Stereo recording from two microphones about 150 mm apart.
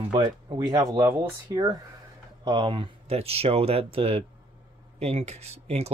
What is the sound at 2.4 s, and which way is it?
Speech, 30° right (ahead or behind).